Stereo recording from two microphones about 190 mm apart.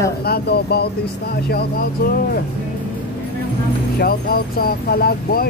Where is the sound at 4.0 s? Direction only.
50° left (ahead or behind).